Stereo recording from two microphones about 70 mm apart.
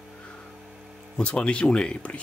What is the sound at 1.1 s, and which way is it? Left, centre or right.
Speech, centre.